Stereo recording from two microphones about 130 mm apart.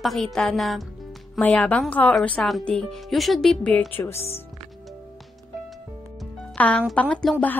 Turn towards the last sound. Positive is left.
turn(degrees=10)  # may be behind; listen again after turning